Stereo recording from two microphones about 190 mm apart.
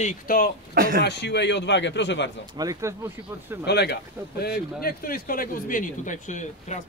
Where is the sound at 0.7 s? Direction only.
50° right (ahead or behind).